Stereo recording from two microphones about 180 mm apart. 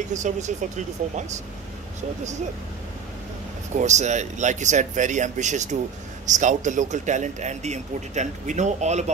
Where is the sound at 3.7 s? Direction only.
40° right (ahead or behind).